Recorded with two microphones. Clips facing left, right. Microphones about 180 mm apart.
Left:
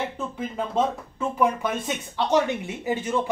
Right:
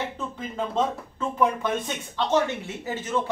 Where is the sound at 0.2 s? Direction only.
5° left (ahead or behind).